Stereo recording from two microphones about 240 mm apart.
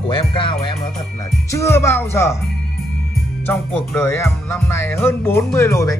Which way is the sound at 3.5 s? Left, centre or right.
Centre.